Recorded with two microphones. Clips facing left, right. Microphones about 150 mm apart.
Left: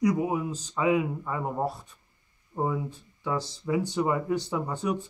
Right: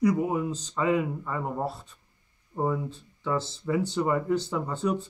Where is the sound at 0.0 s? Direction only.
10° left (ahead or behind).